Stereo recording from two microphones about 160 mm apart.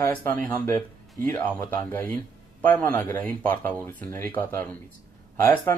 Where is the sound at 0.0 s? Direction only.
10° left (ahead or behind).